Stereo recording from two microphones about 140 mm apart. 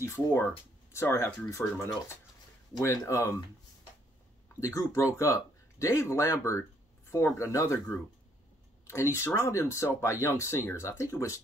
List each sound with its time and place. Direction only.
0.0 s speech: 15° left (ahead or behind)
2.8 s speech: 20° left (ahead or behind)
4.6 s speech: 20° left (ahead or behind)